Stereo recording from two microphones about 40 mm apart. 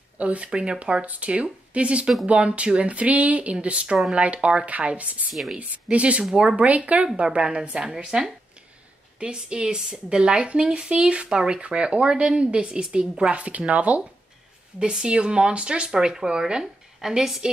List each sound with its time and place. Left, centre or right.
0.2 s a woman's voice: right
3.6 s a woman's voice: right
7.2 s a woman's voice: right
13.3 s speech: right
14.8 s a woman's voice: right
15.9 s a woman's voice: centre